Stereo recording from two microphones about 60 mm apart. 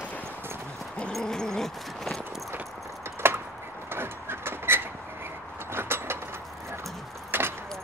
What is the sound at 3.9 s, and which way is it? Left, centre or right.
Vehicle, right.